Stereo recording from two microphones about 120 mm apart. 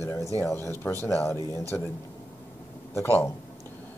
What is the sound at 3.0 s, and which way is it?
Speech, 20° left (ahead or behind).